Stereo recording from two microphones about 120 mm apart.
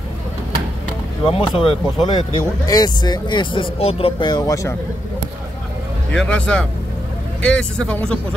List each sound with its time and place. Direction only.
1.2 s speech: 50° left (ahead or behind)
2.0 s speech: 35° left (ahead or behind); by 4.1 s 55° left (ahead or behind)
4.2 s speech: 35° left (ahead or behind)
6.1 s speech: 10° left (ahead or behind)